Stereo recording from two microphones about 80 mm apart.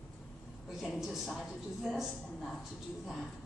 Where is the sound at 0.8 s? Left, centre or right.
Centre.